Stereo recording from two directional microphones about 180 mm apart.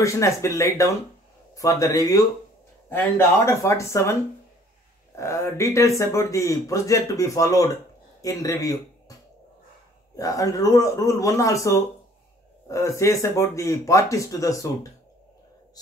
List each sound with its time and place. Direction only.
0.0 s speech: 15° left (ahead or behind)
10.1 s speech: 20° left (ahead or behind)